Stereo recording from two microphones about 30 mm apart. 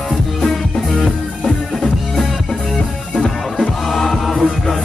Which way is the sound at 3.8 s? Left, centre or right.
Centre.